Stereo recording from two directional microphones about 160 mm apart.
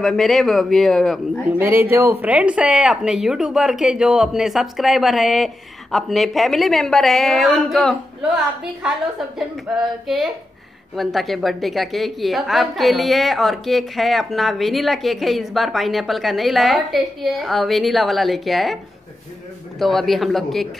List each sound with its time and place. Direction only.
0.0 s a woman's voice: centre (ahead or behind)
1.6 s a woman's voice: 15° right (ahead or behind)
19.8 s a woman's voice: centre (ahead or behind)